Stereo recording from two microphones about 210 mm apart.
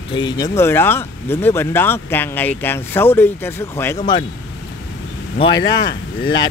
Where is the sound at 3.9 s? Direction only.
20° left (ahead or behind).